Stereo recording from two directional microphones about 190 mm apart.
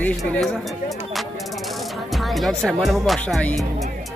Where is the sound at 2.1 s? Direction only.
Centre (ahead or behind).